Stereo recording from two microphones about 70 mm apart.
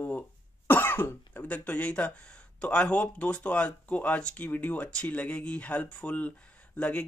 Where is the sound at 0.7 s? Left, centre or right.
Left.